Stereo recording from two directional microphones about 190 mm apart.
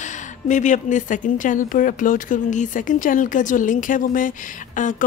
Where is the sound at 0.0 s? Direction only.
40° left (ahead or behind).